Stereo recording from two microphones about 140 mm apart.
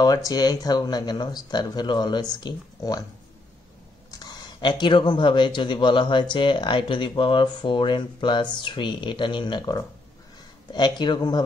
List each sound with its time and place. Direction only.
0.0 s speech: 25° left (ahead or behind)
4.1 s speech: 30° left (ahead or behind)